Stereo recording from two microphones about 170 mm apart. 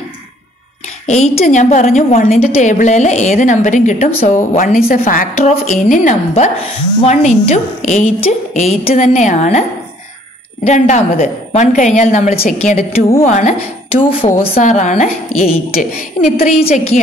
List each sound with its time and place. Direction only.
1.0 s a woman's voice: 45° left (ahead or behind)
4.4 s a woman's voice: 55° left (ahead or behind)